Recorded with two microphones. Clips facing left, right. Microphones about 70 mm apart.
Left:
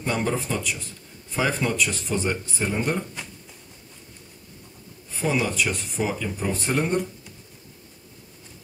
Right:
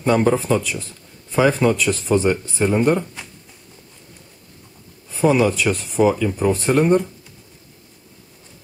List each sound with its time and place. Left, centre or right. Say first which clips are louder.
0.0 s speech: right 9 dB; right
5.3 s speech: right 5 dB; right